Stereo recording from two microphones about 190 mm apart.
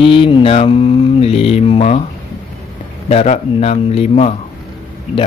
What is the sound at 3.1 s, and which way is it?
Speech, 35° left (ahead or behind).